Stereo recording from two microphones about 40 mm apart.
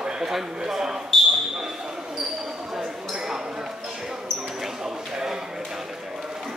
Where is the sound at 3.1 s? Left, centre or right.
Centre.